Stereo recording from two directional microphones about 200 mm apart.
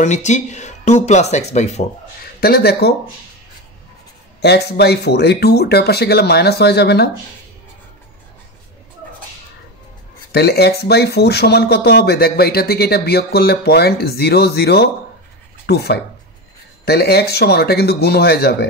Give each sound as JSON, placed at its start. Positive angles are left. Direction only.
{"t": 0.0, "sound": "speech", "side_deg": 35}
{"t": 2.4, "sound": "speech", "side_deg": 50}
{"t": 4.4, "sound": "speech", "side_deg": 55}
{"t": 10.3, "sound": "speech", "side_deg": 55}